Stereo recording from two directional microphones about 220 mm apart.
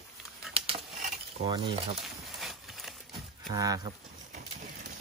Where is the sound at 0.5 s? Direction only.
25° right (ahead or behind).